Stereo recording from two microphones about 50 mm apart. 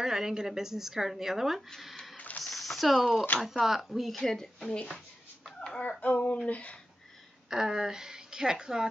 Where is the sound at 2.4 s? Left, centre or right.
Centre.